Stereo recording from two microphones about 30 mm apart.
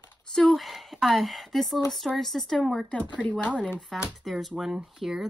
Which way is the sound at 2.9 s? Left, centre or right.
Left.